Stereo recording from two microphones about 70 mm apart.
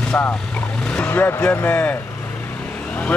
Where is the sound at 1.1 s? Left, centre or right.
Left.